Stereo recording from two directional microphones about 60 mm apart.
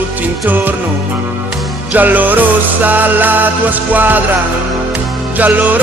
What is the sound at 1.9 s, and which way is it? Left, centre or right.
Music, right.